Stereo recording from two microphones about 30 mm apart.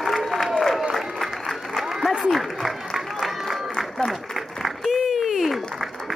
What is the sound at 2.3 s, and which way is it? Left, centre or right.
Applause, centre.